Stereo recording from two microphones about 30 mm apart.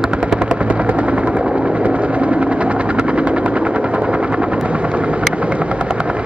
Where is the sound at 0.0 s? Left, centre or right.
Right.